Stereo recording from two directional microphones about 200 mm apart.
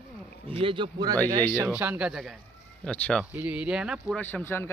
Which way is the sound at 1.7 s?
5° right (ahead or behind).